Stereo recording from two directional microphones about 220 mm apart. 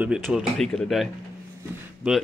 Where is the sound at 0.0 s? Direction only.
5° right (ahead or behind).